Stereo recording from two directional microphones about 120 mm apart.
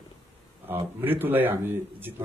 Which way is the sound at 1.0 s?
15° right (ahead or behind).